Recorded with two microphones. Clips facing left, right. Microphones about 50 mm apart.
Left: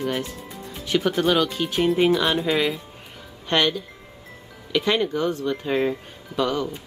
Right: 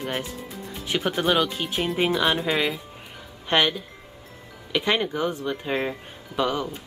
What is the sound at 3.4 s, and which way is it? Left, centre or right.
Speech, centre.